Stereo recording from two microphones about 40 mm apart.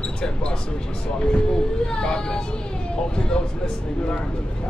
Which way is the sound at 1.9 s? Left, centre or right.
Left.